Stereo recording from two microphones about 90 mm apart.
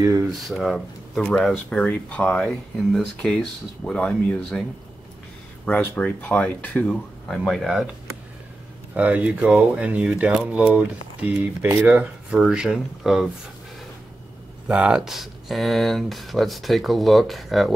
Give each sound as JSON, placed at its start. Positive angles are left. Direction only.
{"t": 0.5, "sound": "speech", "side_deg": 0}
{"t": 5.7, "sound": "speech", "side_deg": 15}
{"t": 8.9, "sound": "speech", "side_deg": -15}
{"t": 14.7, "sound": "speech", "side_deg": -10}